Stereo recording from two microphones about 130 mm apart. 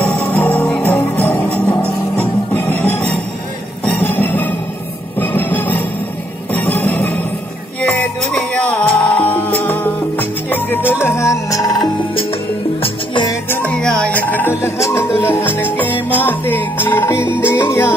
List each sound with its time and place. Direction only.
0.0 s music: 10° left (ahead or behind)
12.8 s music: 35° left (ahead or behind)
13.5 s music: 10° left (ahead or behind)